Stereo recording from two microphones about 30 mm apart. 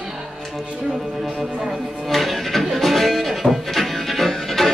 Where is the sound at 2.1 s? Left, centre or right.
Centre.